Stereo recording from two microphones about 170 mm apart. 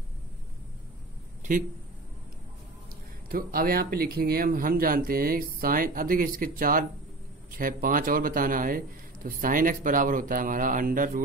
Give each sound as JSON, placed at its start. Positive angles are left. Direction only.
{"t": 1.5, "sound": "speech", "side_deg": -50}
{"t": 3.3, "sound": "a man's voice", "side_deg": -60}